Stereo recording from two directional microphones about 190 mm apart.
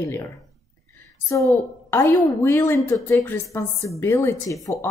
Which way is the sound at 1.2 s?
15° left (ahead or behind).